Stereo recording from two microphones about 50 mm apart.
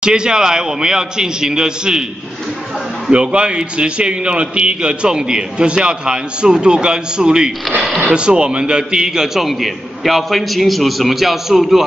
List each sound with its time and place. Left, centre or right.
0.0 s a man's voice: centre
3.1 s a man's voice: right; by 11.8 s centre